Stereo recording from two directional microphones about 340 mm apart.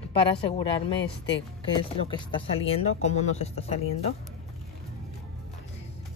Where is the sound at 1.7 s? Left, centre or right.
Centre.